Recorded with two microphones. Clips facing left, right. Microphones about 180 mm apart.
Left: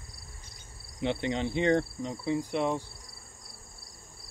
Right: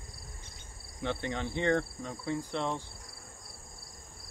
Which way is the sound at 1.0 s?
15° left (ahead or behind).